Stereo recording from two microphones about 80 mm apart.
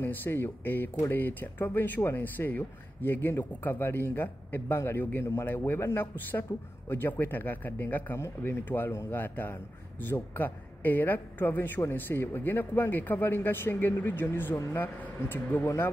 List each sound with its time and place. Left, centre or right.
0.0 s speech: left